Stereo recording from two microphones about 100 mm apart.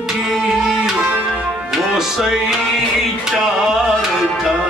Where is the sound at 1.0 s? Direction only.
15° right (ahead or behind).